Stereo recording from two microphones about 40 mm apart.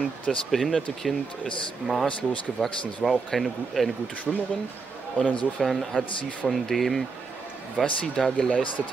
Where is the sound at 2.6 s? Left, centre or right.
Left.